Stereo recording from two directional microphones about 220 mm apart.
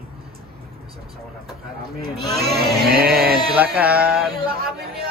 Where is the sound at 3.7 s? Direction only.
5° right (ahead or behind).